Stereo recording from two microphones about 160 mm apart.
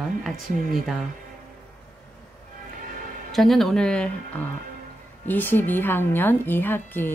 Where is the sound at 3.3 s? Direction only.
Centre (ahead or behind).